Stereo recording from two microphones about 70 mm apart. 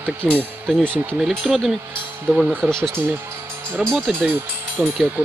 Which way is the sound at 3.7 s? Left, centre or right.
Centre.